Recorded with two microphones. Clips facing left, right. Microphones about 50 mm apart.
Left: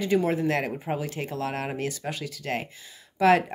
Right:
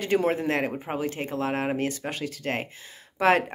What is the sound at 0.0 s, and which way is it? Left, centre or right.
Speech, right.